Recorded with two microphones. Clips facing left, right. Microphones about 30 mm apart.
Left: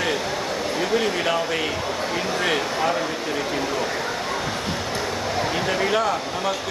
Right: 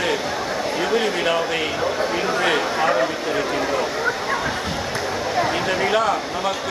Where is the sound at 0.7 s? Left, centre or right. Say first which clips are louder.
Right 2 dB; centre.